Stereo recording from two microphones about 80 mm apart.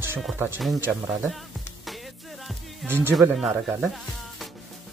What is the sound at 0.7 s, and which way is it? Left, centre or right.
Speech, right.